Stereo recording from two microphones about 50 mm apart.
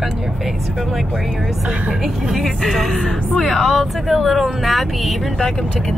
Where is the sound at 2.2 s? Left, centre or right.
Centre.